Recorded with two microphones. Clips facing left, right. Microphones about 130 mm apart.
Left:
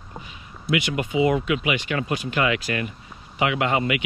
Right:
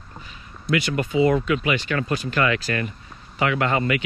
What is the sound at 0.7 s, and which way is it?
Speech, 5° left (ahead or behind).